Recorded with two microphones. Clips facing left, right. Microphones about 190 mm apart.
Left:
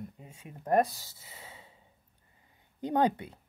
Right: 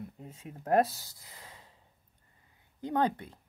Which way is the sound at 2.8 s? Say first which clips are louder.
Left 2 dB; 15° left (ahead or behind).